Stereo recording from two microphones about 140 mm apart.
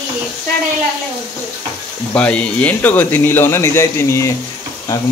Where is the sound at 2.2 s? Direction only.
10° left (ahead or behind).